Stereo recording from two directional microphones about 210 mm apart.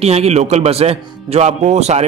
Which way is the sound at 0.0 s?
30° right (ahead or behind).